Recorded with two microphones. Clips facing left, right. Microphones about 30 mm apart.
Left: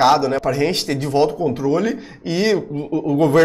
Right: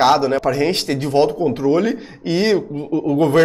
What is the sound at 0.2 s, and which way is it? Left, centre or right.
Speech, centre.